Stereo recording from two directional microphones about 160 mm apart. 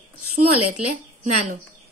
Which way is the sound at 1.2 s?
50° right (ahead or behind).